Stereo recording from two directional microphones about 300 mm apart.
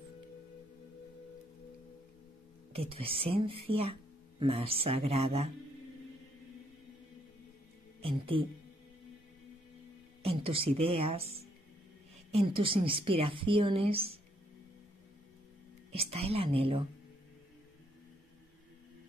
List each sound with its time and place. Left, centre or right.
2.7 s speech: centre
8.0 s a woman's voice: centre
10.2 s a woman's voice: centre
15.9 s speech: centre